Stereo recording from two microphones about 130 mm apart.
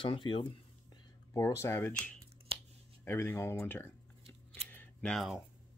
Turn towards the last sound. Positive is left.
turn(degrees=0)  # may be behind; listen again after turning